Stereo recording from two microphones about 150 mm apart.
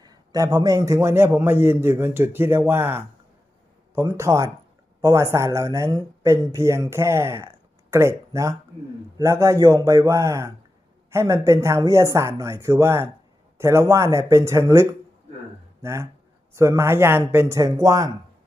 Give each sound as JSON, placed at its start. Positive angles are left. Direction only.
{"t": 0.0, "sound": "a man's voice", "side_deg": -25}